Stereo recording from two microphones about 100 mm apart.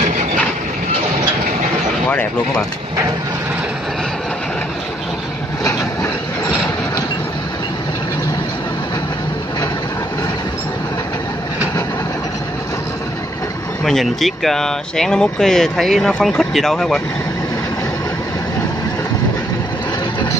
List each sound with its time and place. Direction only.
13.8 s speech: centre (ahead or behind)